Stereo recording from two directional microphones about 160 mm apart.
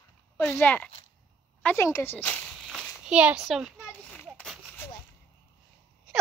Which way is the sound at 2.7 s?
5° right (ahead or behind).